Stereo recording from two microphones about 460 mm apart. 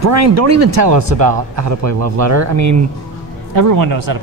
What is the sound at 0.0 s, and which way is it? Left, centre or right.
A man's voice, right.